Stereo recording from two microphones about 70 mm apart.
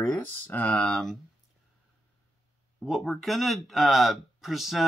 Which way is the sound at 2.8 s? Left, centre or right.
Centre.